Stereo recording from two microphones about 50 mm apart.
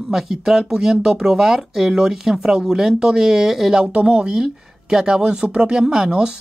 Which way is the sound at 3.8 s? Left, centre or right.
Right.